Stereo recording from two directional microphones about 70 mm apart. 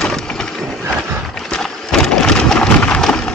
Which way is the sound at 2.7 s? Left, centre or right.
Centre.